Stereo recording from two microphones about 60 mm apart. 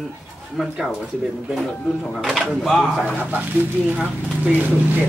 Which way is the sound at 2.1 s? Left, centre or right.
Centre.